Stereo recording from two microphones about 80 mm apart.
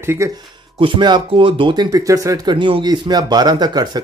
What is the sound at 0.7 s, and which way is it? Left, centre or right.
Speech, right.